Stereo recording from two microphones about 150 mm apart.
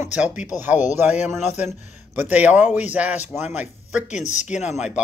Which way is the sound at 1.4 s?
50° left (ahead or behind).